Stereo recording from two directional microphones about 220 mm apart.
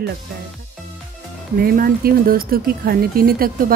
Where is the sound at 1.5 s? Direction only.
40° right (ahead or behind).